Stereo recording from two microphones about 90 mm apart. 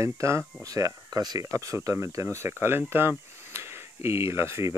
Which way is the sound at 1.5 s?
35° right (ahead or behind).